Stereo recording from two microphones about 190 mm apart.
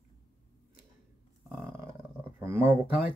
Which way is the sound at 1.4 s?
Centre (ahead or behind).